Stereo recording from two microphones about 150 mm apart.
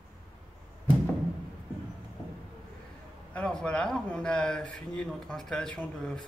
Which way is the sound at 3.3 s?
5° left (ahead or behind).